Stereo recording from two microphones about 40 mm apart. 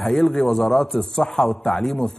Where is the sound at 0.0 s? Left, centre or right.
Centre.